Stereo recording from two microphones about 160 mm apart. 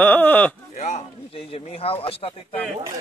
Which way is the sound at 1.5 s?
35° left (ahead or behind).